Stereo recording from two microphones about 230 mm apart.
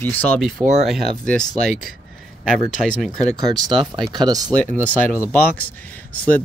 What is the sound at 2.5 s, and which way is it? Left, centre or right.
Speech, centre.